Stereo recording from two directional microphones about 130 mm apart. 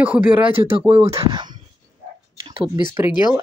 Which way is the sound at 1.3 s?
35° right (ahead or behind).